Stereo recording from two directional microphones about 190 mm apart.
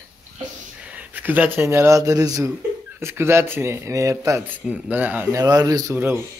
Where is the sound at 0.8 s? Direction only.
10° right (ahead or behind).